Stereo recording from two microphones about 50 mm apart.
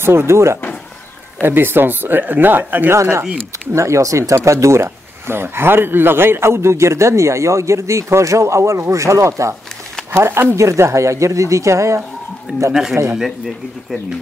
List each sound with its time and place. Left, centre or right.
0.0 s speech: right
1.4 s speech: right
2.9 s speech: right
3.7 s speech: right
10.1 s speech: right
12.5 s speech: right
13.0 s speech: right